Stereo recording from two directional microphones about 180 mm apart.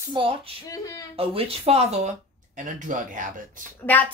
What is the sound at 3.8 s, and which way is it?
Speech, 10° left (ahead or behind).